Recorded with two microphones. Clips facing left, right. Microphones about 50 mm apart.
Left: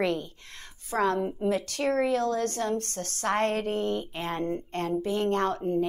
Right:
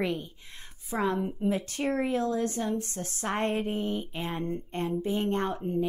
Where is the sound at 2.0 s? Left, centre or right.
Right.